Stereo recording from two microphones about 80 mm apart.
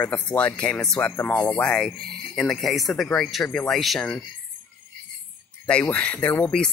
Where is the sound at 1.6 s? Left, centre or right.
Centre.